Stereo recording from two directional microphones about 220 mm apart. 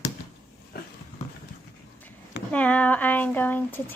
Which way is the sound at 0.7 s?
45° left (ahead or behind).